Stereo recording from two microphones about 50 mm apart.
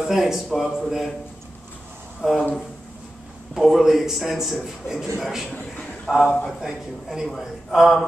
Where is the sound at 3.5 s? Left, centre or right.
Centre.